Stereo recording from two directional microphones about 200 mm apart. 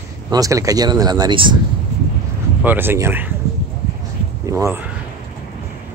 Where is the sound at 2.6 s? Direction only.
10° right (ahead or behind).